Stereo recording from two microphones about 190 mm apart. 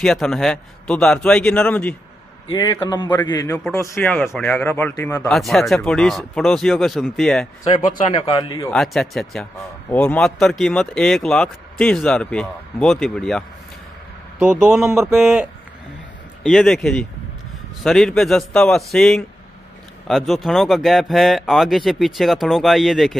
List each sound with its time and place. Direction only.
0.0 s speech: centre (ahead or behind)
2.5 s a man's voice: 20° left (ahead or behind)
3.5 s speech: 10° left (ahead or behind)
5.3 s speech: centre (ahead or behind)
8.1 s a man's voice: 25° left (ahead or behind)
8.7 s speech: centre (ahead or behind)
14.4 s speech: 5° right (ahead or behind)
14.9 s speech: 15° right (ahead or behind)
15.1 s speech: 5° right (ahead or behind)
16.4 s speech: centre (ahead or behind)